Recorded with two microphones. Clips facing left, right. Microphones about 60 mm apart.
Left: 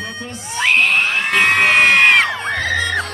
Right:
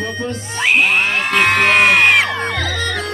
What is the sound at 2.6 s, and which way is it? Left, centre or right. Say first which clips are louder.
Music: left 3 dB; left.